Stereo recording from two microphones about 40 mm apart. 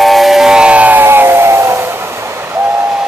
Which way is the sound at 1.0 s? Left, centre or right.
Right.